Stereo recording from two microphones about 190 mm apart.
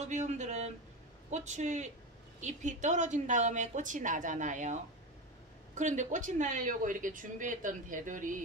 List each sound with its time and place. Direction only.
0.0 s a woman's voice: 40° right (ahead or behind)
5.8 s speech: 40° right (ahead or behind)